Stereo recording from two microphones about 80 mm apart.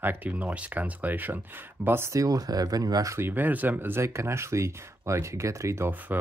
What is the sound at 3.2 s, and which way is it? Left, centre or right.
Speech, right.